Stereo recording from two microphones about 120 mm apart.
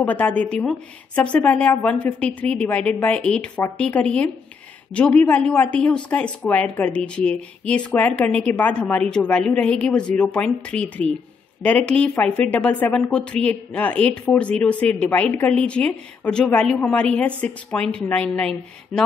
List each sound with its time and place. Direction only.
0.0 s a woman's voice: 10° left (ahead or behind)